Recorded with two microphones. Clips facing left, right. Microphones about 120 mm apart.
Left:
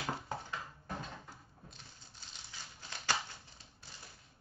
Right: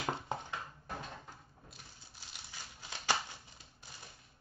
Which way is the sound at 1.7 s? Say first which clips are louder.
Even; 10° right (ahead or behind).